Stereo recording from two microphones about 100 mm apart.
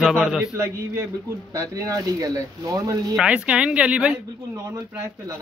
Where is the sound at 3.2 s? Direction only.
10° right (ahead or behind).